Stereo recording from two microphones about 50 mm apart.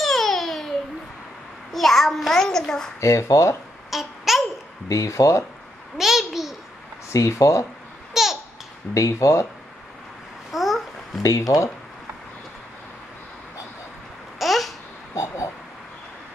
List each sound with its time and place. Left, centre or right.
0.0 s a sound: centre
1.7 s a child's voice: centre
3.0 s speech: left
3.9 s babbling: centre
4.9 s speech: left
5.9 s babbling: centre
7.1 s speech: left
8.1 s babbling: centre
8.9 s speech: left
10.5 s babbling: centre
11.2 s speech: left
14.4 s babbling: centre
15.1 s a sound: left